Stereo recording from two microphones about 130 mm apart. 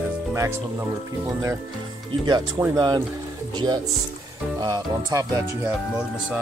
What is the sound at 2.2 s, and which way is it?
Speech, 35° right (ahead or behind).